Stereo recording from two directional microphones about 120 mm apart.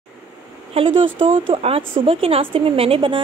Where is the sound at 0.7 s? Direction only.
45° right (ahead or behind).